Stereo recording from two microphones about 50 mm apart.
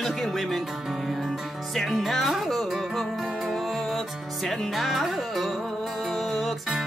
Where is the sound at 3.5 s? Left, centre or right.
Centre.